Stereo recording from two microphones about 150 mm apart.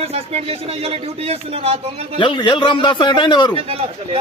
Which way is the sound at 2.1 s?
30° left (ahead or behind).